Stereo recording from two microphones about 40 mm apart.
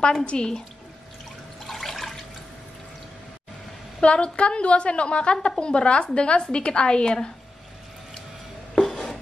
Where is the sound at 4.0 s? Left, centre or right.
Left.